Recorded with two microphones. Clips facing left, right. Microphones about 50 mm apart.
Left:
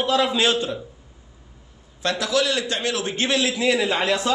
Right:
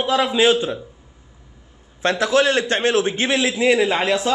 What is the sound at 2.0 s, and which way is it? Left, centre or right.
A man's voice, right.